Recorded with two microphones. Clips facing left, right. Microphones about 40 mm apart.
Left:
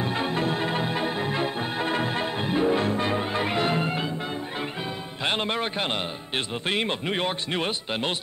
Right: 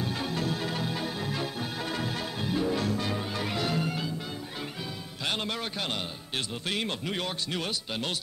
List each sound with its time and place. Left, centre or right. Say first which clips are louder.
0.0 s music: left 5 dB; left
5.2 s speech: left 6 dB; left